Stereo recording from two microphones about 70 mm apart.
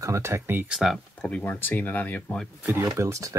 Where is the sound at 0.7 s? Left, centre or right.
Centre.